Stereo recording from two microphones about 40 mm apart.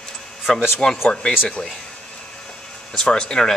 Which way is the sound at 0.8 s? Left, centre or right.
Centre.